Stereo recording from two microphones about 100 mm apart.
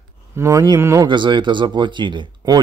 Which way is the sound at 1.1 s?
50° right (ahead or behind).